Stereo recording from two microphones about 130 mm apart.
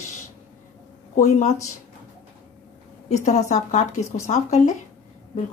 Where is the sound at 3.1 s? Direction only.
65° left (ahead or behind).